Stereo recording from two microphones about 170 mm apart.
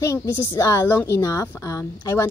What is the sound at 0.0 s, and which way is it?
A woman's voice, 15° left (ahead or behind).